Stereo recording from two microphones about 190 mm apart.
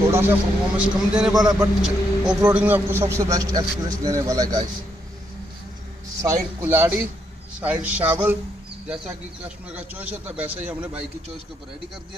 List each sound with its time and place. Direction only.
0.1 s a man's voice: 10° right (ahead or behind)
1.3 s speech: 20° right (ahead or behind)
1.6 s a man's voice: 5° right (ahead or behind); by 4.6 s 20° right (ahead or behind)
6.2 s a man's voice: 10° right (ahead or behind)
9.7 s a man's voice: 10° right (ahead or behind)